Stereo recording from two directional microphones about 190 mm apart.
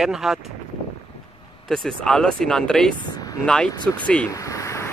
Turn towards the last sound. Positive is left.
turn(degrees=15)  # may be behind; listen again after turning